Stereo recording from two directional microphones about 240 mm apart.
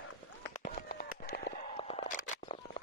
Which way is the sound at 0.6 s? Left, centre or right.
Left.